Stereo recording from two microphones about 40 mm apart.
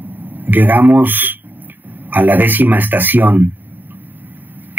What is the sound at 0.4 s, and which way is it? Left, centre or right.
Speech, right.